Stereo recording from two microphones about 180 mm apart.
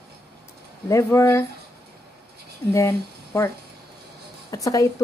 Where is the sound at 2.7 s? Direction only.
15° left (ahead or behind).